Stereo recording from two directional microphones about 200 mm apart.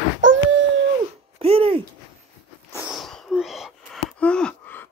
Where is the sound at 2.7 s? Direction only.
5° right (ahead or behind).